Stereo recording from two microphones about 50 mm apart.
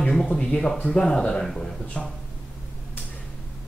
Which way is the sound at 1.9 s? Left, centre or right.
Left.